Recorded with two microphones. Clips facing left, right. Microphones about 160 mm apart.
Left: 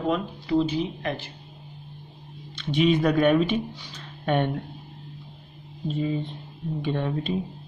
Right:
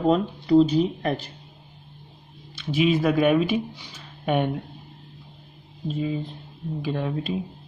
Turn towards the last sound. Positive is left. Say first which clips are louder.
# even
turn(degrees=-5)  # may be behind; listen again after turning